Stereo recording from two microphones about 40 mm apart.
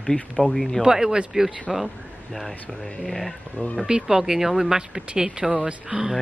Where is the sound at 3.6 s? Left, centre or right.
Left.